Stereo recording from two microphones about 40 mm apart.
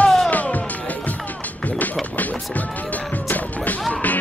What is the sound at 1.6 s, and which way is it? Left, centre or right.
Run, left.